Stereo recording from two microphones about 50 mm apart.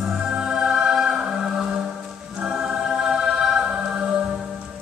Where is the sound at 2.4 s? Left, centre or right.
Centre.